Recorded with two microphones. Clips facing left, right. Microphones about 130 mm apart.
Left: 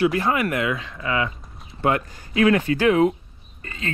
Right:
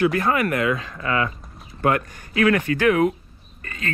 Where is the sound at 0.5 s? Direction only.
40° right (ahead or behind).